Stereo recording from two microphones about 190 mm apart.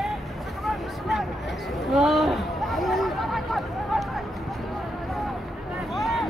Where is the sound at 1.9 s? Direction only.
Centre (ahead or behind).